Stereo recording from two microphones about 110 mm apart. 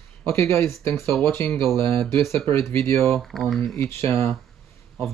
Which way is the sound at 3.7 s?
25° left (ahead or behind).